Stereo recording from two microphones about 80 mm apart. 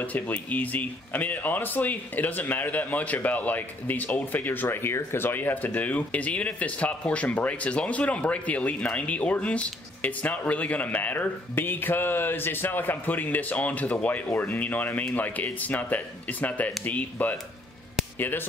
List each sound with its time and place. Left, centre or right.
0.0 s speech: centre